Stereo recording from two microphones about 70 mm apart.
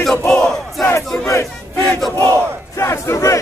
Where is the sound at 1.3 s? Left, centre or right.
Left.